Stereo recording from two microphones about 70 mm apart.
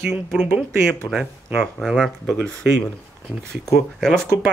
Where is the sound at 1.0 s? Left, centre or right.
Left.